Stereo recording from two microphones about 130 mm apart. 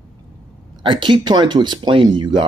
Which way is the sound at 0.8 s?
40° right (ahead or behind).